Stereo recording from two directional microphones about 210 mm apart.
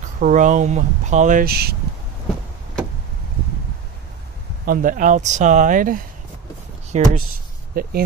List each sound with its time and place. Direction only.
0.2 s speech: 40° right (ahead or behind)
4.6 s speech: 40° right (ahead or behind)
7.8 s speech: 45° right (ahead or behind)